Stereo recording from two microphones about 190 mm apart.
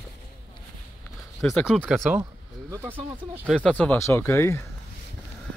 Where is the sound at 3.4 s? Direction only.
5° left (ahead or behind).